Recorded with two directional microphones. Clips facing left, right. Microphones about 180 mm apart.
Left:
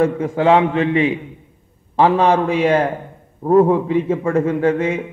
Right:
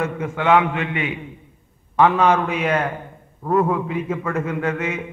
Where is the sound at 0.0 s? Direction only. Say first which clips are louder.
Left 7 dB; 30° left (ahead or behind).